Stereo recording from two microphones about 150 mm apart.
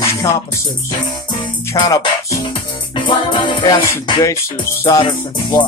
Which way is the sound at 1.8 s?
25° left (ahead or behind).